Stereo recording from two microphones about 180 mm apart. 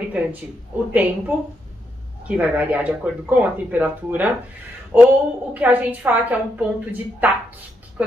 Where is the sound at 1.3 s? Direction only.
10° right (ahead or behind).